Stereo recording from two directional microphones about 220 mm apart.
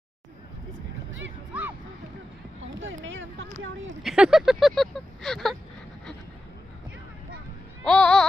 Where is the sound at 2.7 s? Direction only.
60° right (ahead or behind).